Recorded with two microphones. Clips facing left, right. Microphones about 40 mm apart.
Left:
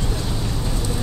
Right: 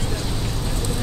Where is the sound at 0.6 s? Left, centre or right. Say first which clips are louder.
Left 1 dB; centre.